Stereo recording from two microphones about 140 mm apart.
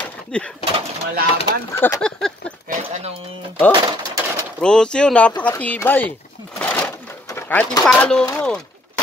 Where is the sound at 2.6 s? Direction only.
55° right (ahead or behind).